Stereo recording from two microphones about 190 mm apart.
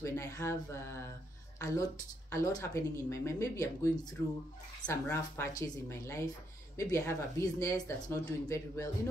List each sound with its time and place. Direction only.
0.0 s speech: 15° left (ahead or behind)